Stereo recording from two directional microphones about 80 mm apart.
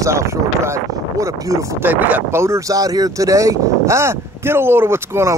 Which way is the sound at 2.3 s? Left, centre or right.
Right.